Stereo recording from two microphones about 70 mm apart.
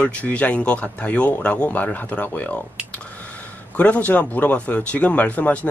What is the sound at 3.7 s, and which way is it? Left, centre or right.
A man's voice, left.